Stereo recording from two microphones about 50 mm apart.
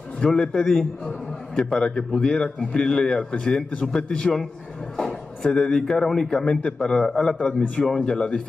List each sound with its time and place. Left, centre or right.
0.2 s a man's voice: centre
4.9 s a sound: centre
6.0 s a man's voice: centre